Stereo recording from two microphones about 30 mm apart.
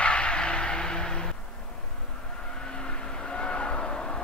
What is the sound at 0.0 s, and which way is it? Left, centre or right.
Vehicle, left.